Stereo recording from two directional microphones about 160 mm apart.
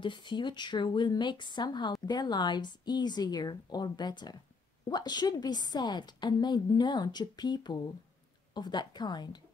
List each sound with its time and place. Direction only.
0.0 s speech: 30° left (ahead or behind)